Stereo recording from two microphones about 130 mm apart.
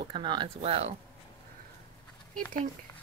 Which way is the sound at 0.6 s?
55° right (ahead or behind).